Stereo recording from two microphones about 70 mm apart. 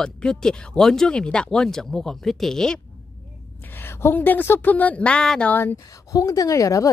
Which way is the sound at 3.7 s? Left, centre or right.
Left.